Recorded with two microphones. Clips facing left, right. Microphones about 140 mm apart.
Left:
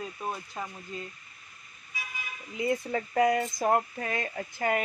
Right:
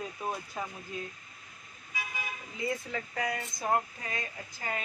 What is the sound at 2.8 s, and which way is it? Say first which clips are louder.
Speech: left 9 dB; 35° left (ahead or behind).